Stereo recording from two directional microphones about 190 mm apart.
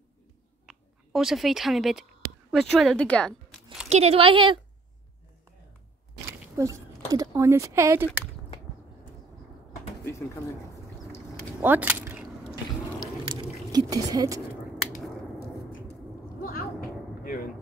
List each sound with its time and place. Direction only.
0.7 s speech: centre (ahead or behind)
3.9 s speech: 30° right (ahead or behind)
6.4 s speech: 15° right (ahead or behind)
11.6 s keys jangling: 10° right (ahead or behind)
13.2 s a sound: 20° right (ahead or behind)
15.9 s a sound: 50° left (ahead or behind)